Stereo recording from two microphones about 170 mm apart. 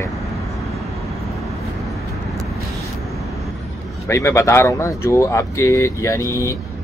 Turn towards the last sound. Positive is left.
turn(degrees=20)  # may be behind; listen again after turning